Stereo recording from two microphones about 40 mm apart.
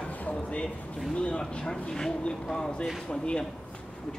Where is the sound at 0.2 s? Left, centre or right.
Left.